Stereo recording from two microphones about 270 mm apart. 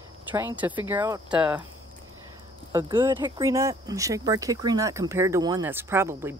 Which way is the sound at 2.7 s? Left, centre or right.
Centre.